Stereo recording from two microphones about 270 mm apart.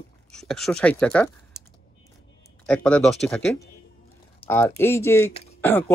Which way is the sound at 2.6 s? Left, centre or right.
Centre.